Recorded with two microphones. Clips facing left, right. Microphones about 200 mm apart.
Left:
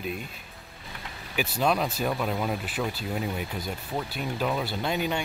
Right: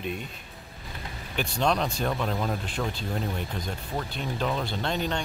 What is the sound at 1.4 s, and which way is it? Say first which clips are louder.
Speech: left 1 dB; 5° left (ahead or behind).